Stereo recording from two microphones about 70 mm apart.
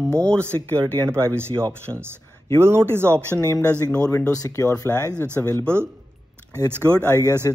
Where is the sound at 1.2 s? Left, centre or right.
Right.